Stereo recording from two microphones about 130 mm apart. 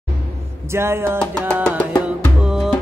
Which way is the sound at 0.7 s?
20° right (ahead or behind).